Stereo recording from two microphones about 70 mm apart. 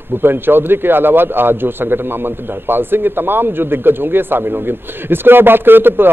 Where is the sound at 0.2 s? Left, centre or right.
Right.